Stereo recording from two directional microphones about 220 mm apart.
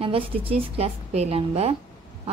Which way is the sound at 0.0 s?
25° right (ahead or behind).